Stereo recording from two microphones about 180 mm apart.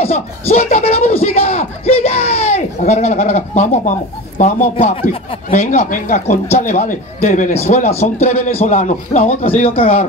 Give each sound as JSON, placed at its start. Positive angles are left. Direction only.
{"t": 0.0, "sound": "speech", "side_deg": 35}